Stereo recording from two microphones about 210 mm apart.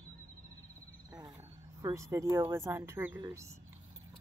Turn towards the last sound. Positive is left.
turn(degrees=-15)  # may be behind; listen again after turning